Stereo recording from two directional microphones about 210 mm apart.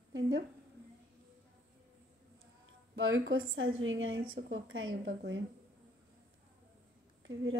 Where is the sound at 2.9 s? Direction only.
65° right (ahead or behind).